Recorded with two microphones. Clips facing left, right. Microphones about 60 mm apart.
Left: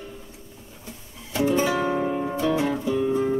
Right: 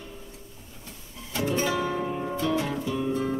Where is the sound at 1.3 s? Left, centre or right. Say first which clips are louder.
Left 5 dB; centre.